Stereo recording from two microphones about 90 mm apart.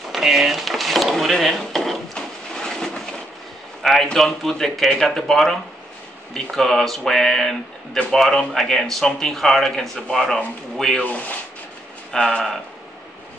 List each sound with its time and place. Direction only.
0.1 s drawer open or close: 5° right (ahead or behind)
3.8 s a man's voice: 5° left (ahead or behind)
11.1 s speech: 15° left (ahead or behind)